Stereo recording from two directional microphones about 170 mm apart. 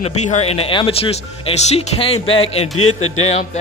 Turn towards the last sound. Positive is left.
turn(degrees=40)  # may be behind; listen again after turning